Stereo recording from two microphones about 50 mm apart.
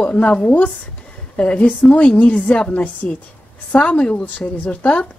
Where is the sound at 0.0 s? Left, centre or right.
Left.